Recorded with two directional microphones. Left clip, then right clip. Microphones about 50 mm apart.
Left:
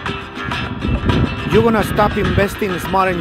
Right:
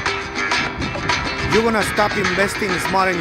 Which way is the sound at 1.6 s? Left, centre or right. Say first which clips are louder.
Left 3 dB; left.